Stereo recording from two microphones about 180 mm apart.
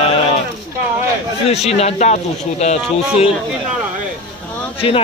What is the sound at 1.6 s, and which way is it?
A man's voice, 35° left (ahead or behind).